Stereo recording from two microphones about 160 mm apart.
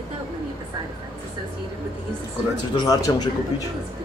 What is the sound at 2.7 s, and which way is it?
Speech, 20° left (ahead or behind).